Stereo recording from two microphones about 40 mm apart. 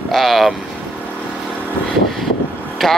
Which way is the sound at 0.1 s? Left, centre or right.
Centre.